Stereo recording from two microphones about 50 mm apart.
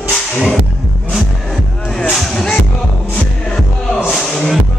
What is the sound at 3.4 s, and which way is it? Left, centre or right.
Music, centre.